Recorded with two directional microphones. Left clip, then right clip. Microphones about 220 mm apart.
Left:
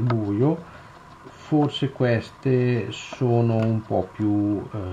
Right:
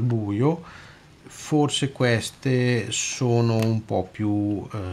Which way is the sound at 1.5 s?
15° right (ahead or behind).